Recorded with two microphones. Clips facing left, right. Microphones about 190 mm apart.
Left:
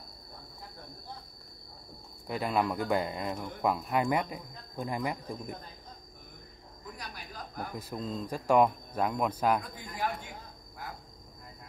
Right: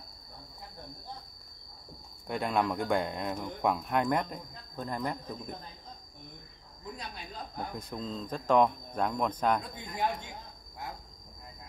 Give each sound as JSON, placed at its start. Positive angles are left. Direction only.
{"t": 2.2, "sound": "speech", "side_deg": 0}
{"t": 7.0, "sound": "a sound", "side_deg": -25}
{"t": 7.7, "sound": "speech", "side_deg": 5}
{"t": 9.6, "sound": "speech", "side_deg": -25}